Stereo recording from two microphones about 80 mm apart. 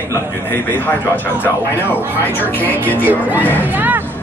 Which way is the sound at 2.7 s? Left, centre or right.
Left.